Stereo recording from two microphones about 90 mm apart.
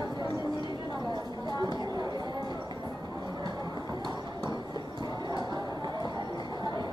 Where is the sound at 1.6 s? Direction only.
50° right (ahead or behind).